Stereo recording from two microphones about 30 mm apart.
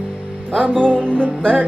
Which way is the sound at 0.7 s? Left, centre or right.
Left.